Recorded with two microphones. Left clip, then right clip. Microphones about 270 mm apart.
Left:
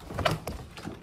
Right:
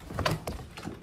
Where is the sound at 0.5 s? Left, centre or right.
Centre.